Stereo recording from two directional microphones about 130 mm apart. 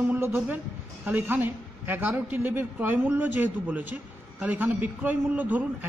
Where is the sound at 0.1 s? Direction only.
15° right (ahead or behind).